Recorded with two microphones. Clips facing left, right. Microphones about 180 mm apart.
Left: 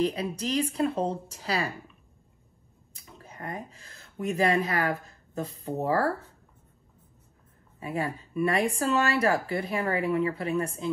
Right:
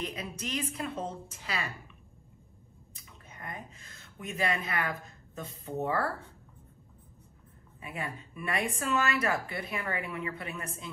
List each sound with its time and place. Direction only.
0.0 s speech: 35° left (ahead or behind)
3.0 s speech: 35° left (ahead or behind)
7.8 s speech: 35° left (ahead or behind)